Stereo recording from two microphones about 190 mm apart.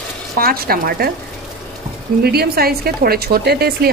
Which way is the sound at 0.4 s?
50° right (ahead or behind).